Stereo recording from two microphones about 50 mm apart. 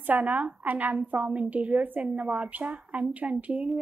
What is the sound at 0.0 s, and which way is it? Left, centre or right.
A woman's voice, right.